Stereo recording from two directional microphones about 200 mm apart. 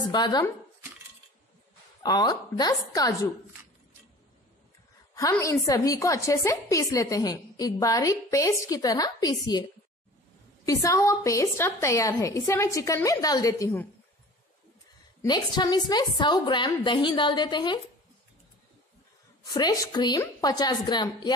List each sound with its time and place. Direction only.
0.1 s a woman's voice: 20° left (ahead or behind)
2.0 s a woman's voice: 20° left (ahead or behind)
5.1 s a woman's voice: 15° left (ahead or behind)
15.2 s a woman's voice: 20° left (ahead or behind)
19.5 s a woman's voice: 20° left (ahead or behind)